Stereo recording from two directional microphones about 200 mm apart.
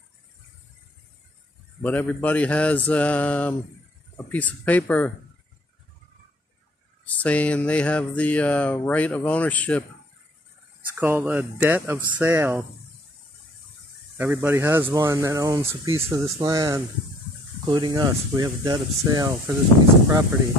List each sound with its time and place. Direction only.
1.8 s speech: 10° left (ahead or behind)
7.1 s speech: 5° left (ahead or behind)
11.0 s speech: 10° right (ahead or behind)
14.1 s speech: 10° right (ahead or behind)